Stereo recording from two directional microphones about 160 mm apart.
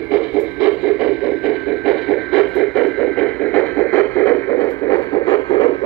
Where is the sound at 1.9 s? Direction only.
Centre (ahead or behind).